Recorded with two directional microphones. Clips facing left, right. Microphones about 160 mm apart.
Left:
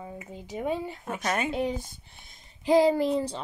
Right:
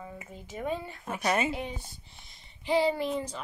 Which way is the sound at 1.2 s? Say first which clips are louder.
Right 1 dB; 5° right (ahead or behind).